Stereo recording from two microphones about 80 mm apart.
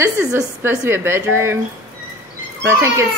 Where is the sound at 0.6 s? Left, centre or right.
Right.